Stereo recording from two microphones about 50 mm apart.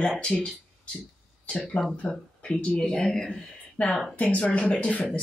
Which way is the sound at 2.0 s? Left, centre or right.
Centre.